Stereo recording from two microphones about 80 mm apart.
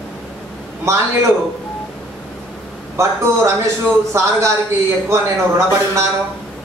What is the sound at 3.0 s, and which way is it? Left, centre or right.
A man's voice, right.